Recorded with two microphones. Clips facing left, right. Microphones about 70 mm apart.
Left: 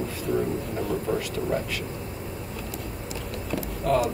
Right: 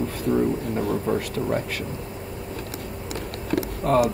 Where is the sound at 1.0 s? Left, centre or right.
Right.